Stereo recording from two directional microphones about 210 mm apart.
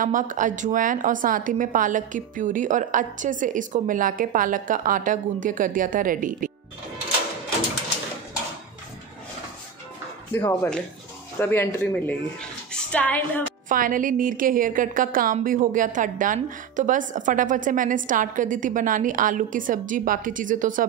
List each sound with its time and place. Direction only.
0.0 s a woman's voice: 40° right (ahead or behind)
10.3 s a woman's voice: 10° left (ahead or behind)
13.7 s a woman's voice: 40° right (ahead or behind)